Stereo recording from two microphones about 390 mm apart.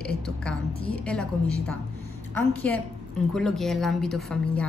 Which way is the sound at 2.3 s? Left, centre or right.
Centre.